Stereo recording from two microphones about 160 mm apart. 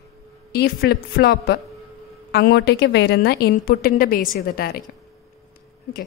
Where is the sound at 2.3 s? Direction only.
90° left.